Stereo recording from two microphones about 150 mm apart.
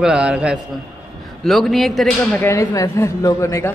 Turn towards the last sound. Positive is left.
turn(degrees=20)  # may be behind; listen again after turning